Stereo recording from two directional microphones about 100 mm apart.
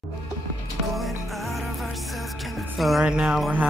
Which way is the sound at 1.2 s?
Centre (ahead or behind).